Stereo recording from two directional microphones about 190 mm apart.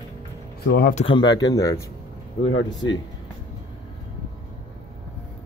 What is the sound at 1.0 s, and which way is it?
Speech, 25° left (ahead or behind).